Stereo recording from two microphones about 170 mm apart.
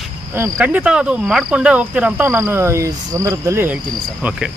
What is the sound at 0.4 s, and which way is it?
Speech, 10° right (ahead or behind).